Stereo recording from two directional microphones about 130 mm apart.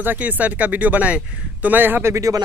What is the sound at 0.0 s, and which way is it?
Speech, 15° right (ahead or behind).